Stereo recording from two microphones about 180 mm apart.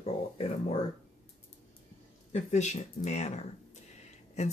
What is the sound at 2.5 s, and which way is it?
Speech, 40° left (ahead or behind).